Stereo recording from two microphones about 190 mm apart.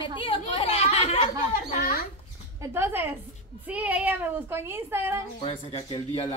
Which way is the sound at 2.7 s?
10° right (ahead or behind).